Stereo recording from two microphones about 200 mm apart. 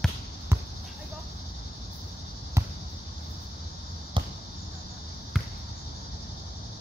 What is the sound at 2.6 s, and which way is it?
Basketball bounce, 15° right (ahead or behind).